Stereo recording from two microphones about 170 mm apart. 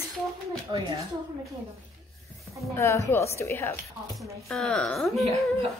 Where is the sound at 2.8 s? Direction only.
15° left (ahead or behind).